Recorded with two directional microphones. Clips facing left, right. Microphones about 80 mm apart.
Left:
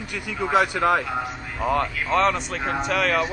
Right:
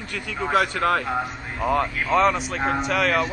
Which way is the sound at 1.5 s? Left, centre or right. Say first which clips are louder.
Right 1 dB; centre.